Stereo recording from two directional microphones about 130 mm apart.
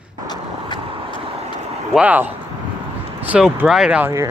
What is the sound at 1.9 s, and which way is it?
Speech, 10° right (ahead or behind).